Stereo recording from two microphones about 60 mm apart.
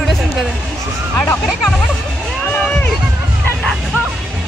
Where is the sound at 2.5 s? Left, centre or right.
Left.